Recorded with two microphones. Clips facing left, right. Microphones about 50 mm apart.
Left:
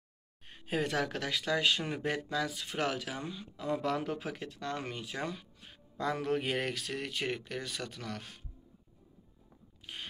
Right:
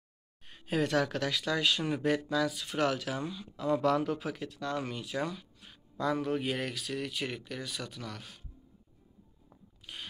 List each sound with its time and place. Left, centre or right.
0.5 s a man's voice: left
4.0 s speech: left
6.1 s speech: left
9.9 s zipper: left